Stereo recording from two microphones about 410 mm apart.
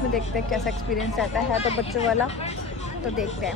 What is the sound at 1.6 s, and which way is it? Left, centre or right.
Speech, centre.